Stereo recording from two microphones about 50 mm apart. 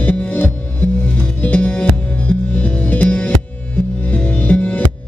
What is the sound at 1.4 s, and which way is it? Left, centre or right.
Music, left.